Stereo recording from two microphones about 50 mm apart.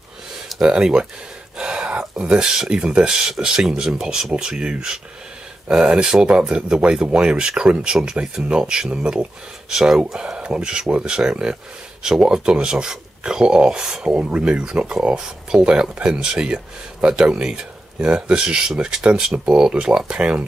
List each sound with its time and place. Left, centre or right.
0.7 s speech: centre
1.6 s a sound: centre
2.1 s speech: centre
10.1 s speech: centre
14.1 s speech: right